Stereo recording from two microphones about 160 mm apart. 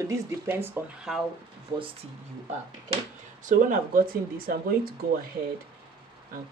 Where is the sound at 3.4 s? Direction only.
55° right (ahead or behind).